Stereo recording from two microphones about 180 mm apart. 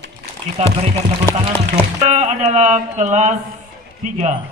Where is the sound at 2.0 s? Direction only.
40° right (ahead or behind).